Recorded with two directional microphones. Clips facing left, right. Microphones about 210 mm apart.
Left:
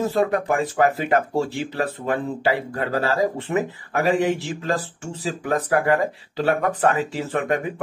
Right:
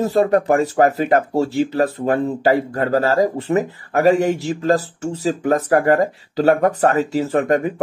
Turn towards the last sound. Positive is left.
turn(degrees=-40)  # may be behind; listen again after turning